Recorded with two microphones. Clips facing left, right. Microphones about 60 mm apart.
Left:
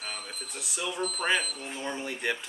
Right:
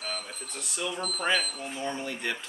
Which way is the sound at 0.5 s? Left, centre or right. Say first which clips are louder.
Right 1 dB; centre.